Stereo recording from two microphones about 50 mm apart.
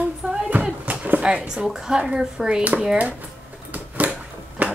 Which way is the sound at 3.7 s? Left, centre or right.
Right.